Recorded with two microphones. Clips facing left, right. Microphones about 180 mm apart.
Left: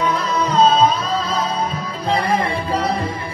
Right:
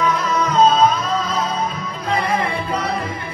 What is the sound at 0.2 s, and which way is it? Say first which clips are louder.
Music: even; 35° left (ahead or behind).